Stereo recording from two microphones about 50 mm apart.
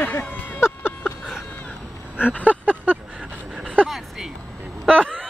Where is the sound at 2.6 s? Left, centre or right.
Right.